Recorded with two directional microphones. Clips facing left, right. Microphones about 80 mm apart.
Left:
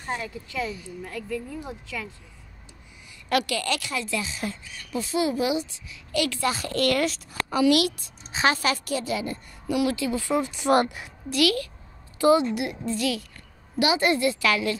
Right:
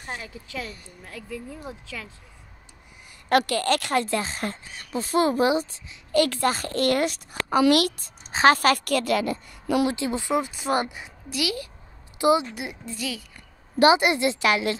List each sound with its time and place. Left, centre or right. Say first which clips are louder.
1.2 s speech: left 4 dB; centre
3.3 s a woman's voice: right 4 dB; right
6.8 s a woman's voice: right 1 dB; right
7.7 s a woman's voice: right 1 dB; right
8.5 s a woman's voice: right 5 dB; right
9.8 s a woman's voice: even; right
10.2 s speech: right 1 dB; centre
10.5 s a woman's voice: left 4 dB; centre
12.5 s a woman's voice: left 6 dB; centre
13.9 s a woman's voice: even; centre